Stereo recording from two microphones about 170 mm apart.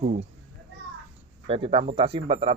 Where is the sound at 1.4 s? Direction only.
35° right (ahead or behind).